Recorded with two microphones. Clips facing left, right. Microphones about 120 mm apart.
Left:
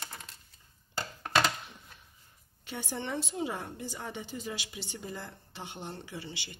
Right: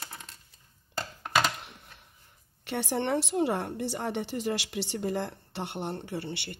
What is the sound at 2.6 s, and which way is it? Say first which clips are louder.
A woman's voice: right 8 dB; 80° right.